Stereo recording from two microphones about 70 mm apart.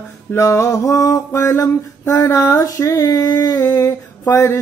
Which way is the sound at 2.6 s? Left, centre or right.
Left.